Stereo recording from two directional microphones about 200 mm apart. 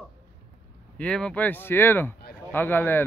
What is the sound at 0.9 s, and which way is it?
Speech, 5° left (ahead or behind).